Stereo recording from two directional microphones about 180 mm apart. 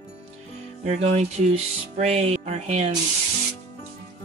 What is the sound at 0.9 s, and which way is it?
Music, 40° right (ahead or behind).